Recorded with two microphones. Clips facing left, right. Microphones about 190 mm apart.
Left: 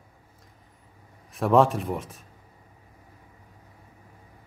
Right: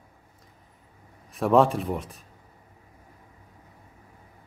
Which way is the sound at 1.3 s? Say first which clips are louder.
Even; centre (ahead or behind).